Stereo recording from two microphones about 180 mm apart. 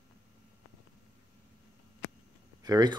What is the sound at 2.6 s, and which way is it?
Speech, 20° right (ahead or behind).